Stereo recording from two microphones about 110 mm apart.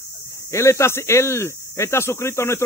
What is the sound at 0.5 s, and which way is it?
Speech, 25° left (ahead or behind).